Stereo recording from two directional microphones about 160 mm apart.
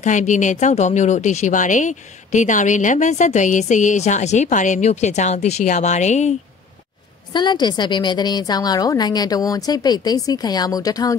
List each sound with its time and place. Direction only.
0.0 s speech: 50° left (ahead or behind)
7.3 s a woman's voice: 30° left (ahead or behind)